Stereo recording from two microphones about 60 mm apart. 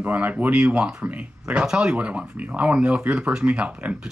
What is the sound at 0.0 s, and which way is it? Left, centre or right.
Speech, right.